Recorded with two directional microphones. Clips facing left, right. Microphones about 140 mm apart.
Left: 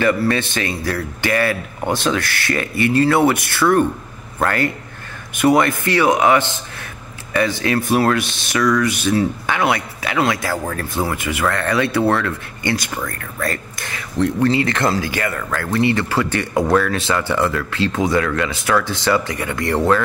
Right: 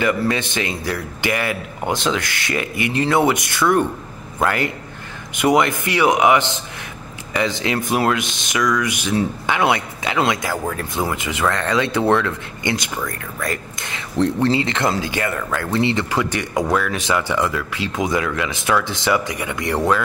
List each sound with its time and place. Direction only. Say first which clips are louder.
0.0 s speech: left 2 dB; 20° right (ahead or behind)
14.1 s speech: left 1 dB; 30° right (ahead or behind); by 20.0 s 15° right (ahead or behind)